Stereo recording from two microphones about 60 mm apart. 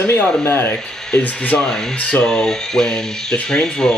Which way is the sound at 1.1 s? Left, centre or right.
Left.